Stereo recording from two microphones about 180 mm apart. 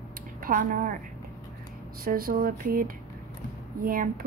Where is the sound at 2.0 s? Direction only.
55° right (ahead or behind).